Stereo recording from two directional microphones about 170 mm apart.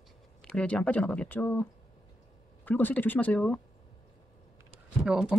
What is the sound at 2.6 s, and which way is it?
Speech, 10° left (ahead or behind).